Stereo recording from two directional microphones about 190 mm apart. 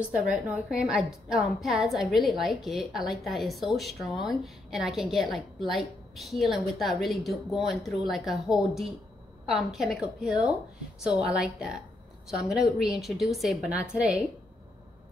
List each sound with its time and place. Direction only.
0.0 s a woman's voice: 5° right (ahead or behind)